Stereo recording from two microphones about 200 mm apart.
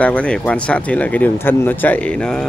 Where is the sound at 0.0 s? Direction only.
5° left (ahead or behind).